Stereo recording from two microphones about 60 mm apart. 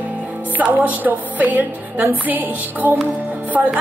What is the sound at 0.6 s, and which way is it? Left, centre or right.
Music, right.